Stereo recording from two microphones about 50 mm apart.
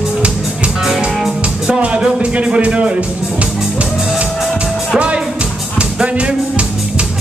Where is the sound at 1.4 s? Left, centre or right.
Right.